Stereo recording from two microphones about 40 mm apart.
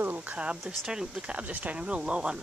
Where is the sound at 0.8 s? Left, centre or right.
Centre.